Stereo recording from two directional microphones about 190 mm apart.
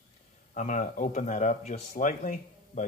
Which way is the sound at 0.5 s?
40° left (ahead or behind).